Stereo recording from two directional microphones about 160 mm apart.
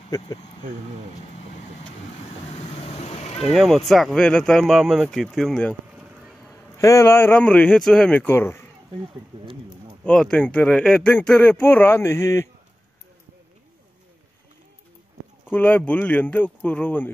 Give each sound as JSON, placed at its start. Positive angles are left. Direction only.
{"t": 2.5, "sound": "vehicle", "side_deg": 40}
{"t": 3.4, "sound": "speech", "side_deg": 0}
{"t": 6.8, "sound": "speech", "side_deg": 20}
{"t": 10.0, "sound": "speech", "side_deg": 5}
{"t": 15.5, "sound": "speech", "side_deg": 10}